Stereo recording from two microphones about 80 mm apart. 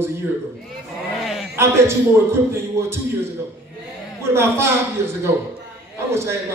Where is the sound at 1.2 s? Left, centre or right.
Centre.